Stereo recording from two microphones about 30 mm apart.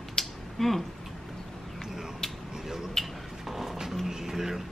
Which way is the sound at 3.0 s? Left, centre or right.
Centre.